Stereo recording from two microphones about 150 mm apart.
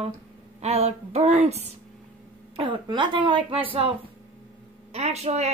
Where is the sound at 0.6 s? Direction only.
45° right (ahead or behind).